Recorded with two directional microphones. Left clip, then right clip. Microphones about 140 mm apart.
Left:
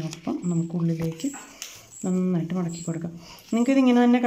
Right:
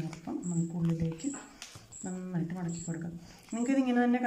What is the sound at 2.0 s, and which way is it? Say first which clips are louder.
Speech: left 12 dB; 40° left (ahead or behind).